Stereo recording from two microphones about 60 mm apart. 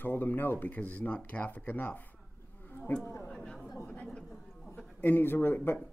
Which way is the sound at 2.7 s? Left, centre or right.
Left.